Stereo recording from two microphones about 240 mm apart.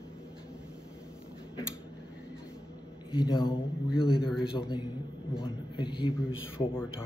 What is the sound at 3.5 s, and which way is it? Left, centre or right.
A man's voice, centre.